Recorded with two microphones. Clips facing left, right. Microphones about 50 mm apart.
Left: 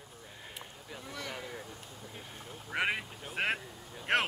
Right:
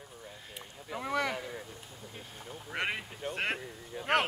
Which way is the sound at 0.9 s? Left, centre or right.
Right.